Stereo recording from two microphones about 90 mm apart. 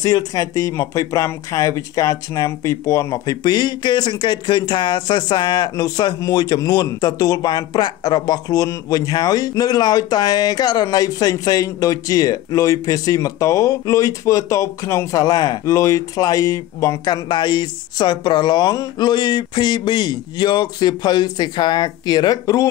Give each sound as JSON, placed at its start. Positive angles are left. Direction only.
{"t": 0.0, "sound": "speech", "side_deg": 40}
{"t": 3.4, "sound": "speech", "side_deg": 50}